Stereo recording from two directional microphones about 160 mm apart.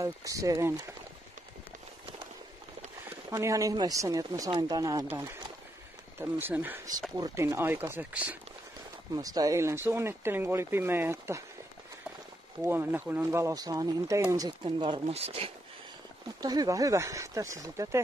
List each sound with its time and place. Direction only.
0.0 s speech: 20° right (ahead or behind)
3.3 s speech: 20° right (ahead or behind)
6.1 s speech: 10° right (ahead or behind)
9.1 s speech: 20° right (ahead or behind)
12.6 s speech: 15° right (ahead or behind); by 15.5 s 40° right (ahead or behind)
16.3 s speech: 25° right (ahead or behind)